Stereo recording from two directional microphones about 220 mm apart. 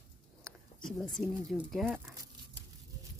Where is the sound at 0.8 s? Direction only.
Centre (ahead or behind).